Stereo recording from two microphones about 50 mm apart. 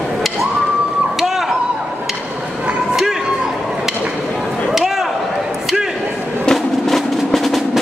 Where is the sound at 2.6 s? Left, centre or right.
Right.